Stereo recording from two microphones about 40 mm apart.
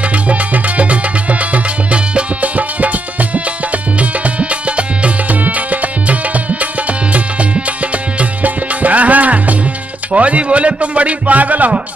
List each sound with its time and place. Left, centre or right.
0.1 s music: right
10.1 s a man's voice: right